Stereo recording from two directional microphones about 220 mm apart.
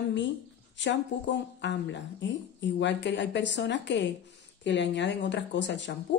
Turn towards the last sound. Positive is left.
turn(degrees=55)  # may be behind; listen again after turning